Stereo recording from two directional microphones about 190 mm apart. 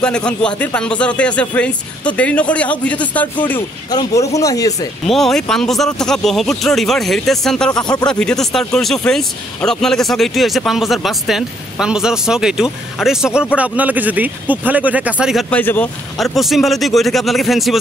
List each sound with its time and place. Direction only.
0.0 s speech: 5° left (ahead or behind)
5.0 s speech: centre (ahead or behind)
7.7 s speech: 20° left (ahead or behind)
8.1 s speech: 5° left (ahead or behind)
15.5 s speech: 10° left (ahead or behind)
16.2 s speech: centre (ahead or behind)